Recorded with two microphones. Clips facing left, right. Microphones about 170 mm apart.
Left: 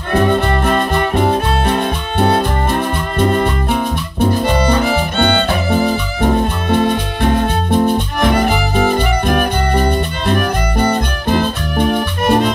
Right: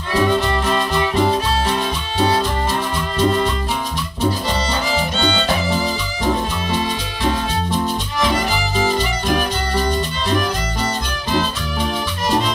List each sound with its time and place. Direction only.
0.1 s music: 55° left (ahead or behind)